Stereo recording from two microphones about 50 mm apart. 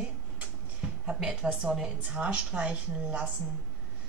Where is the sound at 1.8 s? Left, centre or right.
Right.